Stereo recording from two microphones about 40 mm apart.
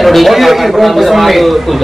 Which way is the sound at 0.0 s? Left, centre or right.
Centre.